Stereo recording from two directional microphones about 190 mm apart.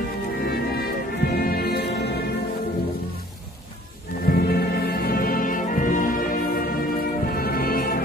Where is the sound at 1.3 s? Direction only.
55° left (ahead or behind).